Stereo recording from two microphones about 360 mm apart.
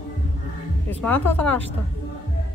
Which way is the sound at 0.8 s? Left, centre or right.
Centre.